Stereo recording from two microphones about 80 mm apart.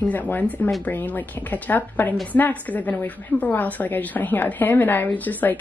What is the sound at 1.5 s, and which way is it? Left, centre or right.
A woman's voice, centre.